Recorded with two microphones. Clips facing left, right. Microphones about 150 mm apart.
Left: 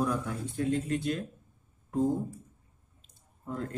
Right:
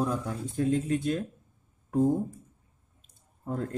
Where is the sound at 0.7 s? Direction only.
45° right (ahead or behind).